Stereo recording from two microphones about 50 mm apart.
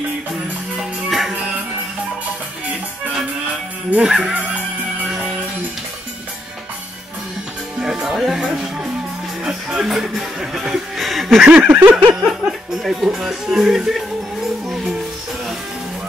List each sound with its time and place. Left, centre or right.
4.0 s speech: centre
5.0 s music: centre
7.8 s music: centre
9.4 s speech: centre
11.1 s a sound: centre
11.4 s snicker: right
11.9 s a sound: centre
12.8 s speech: centre